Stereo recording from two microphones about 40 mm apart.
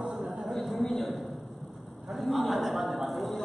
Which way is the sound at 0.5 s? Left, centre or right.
Centre.